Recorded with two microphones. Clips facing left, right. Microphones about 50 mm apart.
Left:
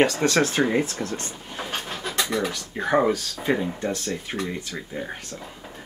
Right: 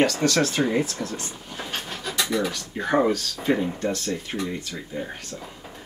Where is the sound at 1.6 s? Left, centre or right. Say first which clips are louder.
Left 2 dB; left.